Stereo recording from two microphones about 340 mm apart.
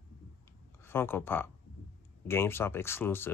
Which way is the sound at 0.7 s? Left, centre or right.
Centre.